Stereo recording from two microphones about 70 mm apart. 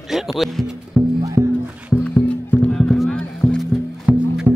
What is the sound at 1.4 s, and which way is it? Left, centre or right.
Music, right.